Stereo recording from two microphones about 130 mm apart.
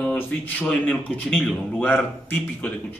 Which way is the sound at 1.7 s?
15° left (ahead or behind).